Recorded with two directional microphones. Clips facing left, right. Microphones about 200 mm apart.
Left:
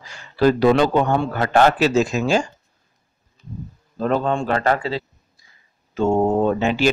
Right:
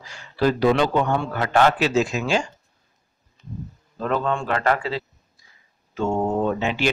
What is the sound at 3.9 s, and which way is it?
A man's voice, 35° left (ahead or behind).